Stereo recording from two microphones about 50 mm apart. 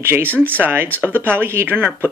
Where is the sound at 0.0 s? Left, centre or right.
Right.